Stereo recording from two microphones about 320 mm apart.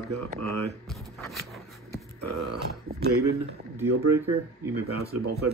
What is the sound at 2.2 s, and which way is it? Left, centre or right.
Speech, right.